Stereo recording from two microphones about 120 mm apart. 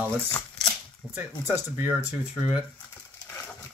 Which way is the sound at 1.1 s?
15° right (ahead or behind).